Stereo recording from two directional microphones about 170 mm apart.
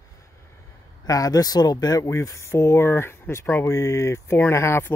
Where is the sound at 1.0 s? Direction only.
20° left (ahead or behind).